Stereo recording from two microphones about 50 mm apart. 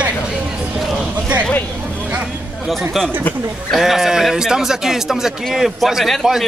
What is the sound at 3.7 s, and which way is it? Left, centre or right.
A man's voice, centre.